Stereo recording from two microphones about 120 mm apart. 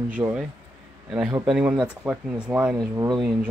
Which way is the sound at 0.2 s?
10° right (ahead or behind).